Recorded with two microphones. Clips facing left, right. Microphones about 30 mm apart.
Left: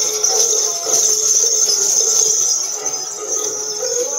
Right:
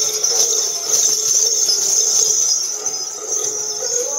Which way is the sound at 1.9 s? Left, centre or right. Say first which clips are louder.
Left 1 dB; centre.